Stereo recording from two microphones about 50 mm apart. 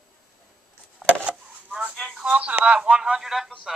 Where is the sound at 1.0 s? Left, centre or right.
Right.